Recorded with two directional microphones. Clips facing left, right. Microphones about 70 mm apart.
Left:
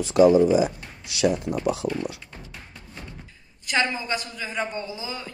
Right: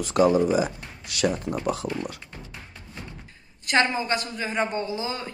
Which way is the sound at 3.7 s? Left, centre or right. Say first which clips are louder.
Right 2 dB; right.